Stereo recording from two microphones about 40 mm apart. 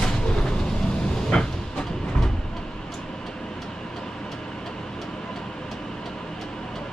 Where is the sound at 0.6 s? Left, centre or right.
Centre.